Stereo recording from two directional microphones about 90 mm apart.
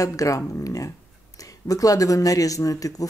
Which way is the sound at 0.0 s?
40° left (ahead or behind).